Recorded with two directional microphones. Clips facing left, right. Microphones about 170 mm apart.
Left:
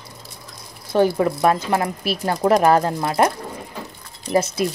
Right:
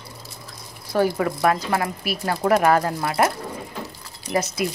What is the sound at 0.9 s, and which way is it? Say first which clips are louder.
Speech: left 3 dB; 25° left (ahead or behind).